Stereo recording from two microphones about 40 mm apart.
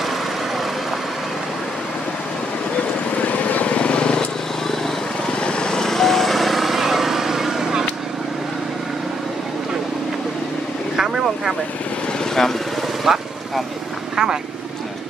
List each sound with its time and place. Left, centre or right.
3.2 s vehicle: left
5.4 s vehicle: left; by 7.8 s centre
11.0 s vehicle: centre
12.4 s vehicle: centre
13.0 s vehicle: centre